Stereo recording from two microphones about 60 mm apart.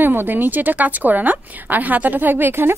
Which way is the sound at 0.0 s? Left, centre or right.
Right.